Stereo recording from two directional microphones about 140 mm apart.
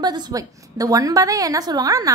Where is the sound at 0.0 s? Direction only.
30° right (ahead or behind).